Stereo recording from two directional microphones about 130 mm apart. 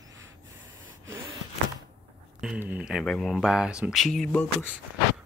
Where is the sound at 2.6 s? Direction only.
10° right (ahead or behind).